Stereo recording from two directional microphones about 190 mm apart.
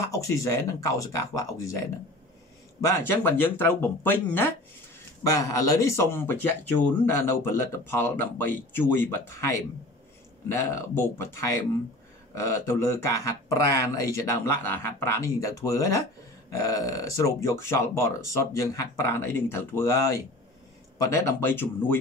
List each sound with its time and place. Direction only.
0.0 s speech: 15° left (ahead or behind)